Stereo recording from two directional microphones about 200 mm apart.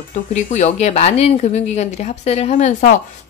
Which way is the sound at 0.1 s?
35° left (ahead or behind).